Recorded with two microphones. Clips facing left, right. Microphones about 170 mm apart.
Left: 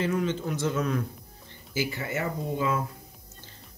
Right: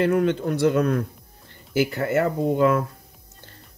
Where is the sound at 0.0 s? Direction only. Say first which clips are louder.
Right 7 dB; 60° right (ahead or behind).